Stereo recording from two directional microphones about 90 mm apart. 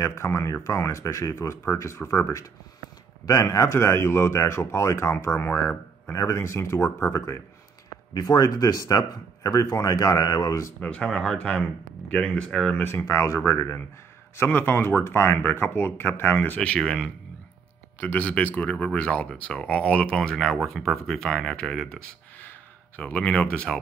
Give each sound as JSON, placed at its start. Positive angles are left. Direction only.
{"t": 0.0, "sound": "speech", "side_deg": 30}
{"t": 8.1, "sound": "speech", "side_deg": 45}
{"t": 10.8, "sound": "speech", "side_deg": 15}
{"t": 13.0, "sound": "speech", "side_deg": 35}